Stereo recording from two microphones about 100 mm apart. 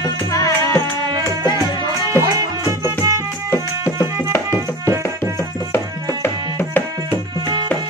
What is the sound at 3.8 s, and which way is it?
Music, 30° left (ahead or behind).